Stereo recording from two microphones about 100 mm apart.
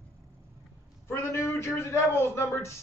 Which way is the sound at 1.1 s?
25° left (ahead or behind).